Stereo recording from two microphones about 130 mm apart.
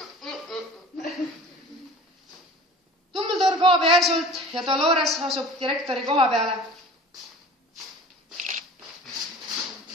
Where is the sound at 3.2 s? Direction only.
40° right (ahead or behind).